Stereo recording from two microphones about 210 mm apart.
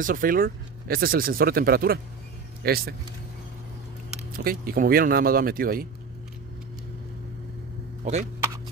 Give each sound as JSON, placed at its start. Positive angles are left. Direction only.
{"t": 0.0, "sound": "speech", "side_deg": -40}
{"t": 4.4, "sound": "speech", "side_deg": -45}
{"t": 8.0, "sound": "speech", "side_deg": -35}